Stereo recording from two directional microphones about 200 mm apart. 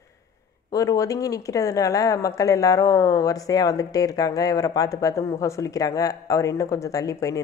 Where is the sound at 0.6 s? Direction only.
15° left (ahead or behind).